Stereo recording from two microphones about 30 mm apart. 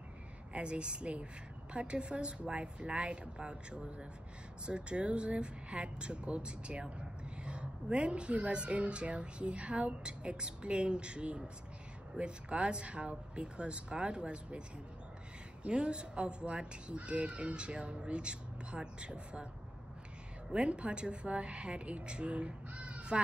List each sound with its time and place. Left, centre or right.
0.5 s speech: right
15.6 s speech: right
20.5 s speech: right